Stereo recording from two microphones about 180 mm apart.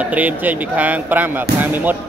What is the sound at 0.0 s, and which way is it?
Speech, 10° right (ahead or behind).